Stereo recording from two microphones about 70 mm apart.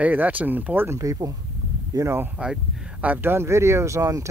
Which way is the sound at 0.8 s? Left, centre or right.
Right.